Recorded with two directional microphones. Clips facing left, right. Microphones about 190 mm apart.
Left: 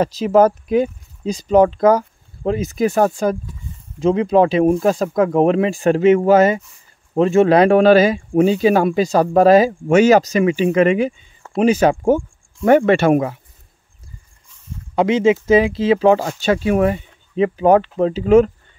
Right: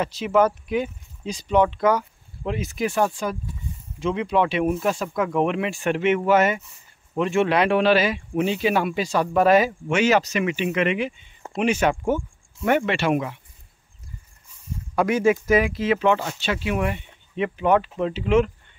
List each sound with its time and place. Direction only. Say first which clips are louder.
0.0 s speech: left 6 dB; 40° left (ahead or behind)
15.0 s speech: left 5 dB; 20° left (ahead or behind); by 18.5 s 40° left (ahead or behind)